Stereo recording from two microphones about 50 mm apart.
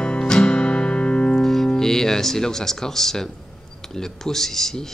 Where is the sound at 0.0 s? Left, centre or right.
Centre.